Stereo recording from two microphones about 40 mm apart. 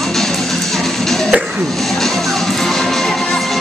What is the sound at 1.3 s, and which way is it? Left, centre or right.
Music, right.